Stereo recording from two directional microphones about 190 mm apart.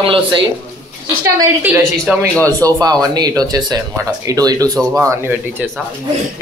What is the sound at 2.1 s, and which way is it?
Speech, 5° right (ahead or behind).